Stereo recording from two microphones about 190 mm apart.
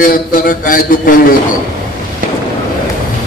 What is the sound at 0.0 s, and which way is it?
A man's voice, 45° left (ahead or behind).